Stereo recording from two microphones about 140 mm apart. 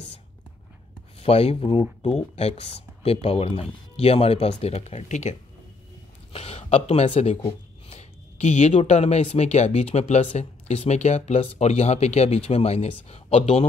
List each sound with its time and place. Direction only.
1.2 s speech: 45° left (ahead or behind)
6.3 s speech: 45° left (ahead or behind)